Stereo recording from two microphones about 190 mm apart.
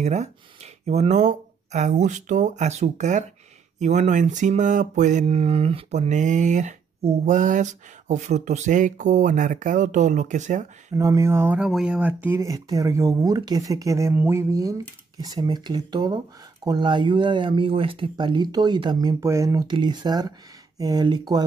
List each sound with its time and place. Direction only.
0.0 s mantra: 35° right (ahead or behind)
11.0 s speech: 15° right (ahead or behind)